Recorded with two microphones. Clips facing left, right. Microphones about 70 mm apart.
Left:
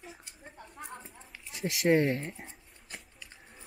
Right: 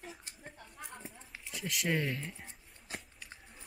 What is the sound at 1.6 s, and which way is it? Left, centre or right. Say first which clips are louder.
Speech: left 5 dB; left.